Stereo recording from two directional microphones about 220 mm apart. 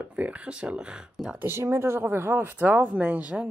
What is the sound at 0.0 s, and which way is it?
Speech, 5° right (ahead or behind).